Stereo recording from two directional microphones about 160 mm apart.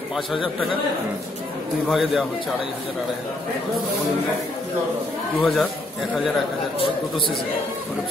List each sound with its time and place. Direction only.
1.9 s a man's voice: centre (ahead or behind)
5.4 s a man's voice: centre (ahead or behind)
6.8 s speech: 35° left (ahead or behind)